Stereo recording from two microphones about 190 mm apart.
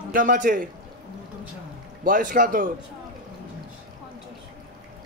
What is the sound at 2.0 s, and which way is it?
Speech, 45° right (ahead or behind).